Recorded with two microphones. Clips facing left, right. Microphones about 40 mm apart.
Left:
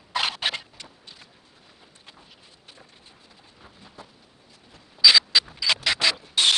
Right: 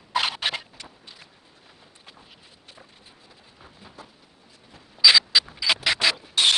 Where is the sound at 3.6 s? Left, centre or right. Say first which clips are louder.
Right 1 dB; centre.